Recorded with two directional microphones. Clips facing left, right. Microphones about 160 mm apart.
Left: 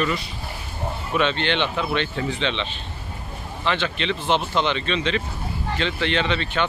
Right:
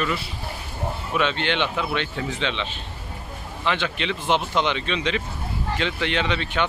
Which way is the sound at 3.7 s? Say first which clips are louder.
Left 1 dB; 10° right (ahead or behind).